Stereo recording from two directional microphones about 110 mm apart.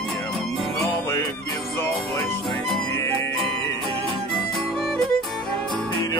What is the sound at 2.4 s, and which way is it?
Music, 5° left (ahead or behind).